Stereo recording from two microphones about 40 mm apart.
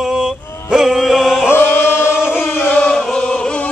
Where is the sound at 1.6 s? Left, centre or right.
Left.